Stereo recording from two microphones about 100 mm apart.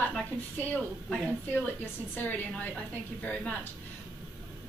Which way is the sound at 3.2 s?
10° left (ahead or behind).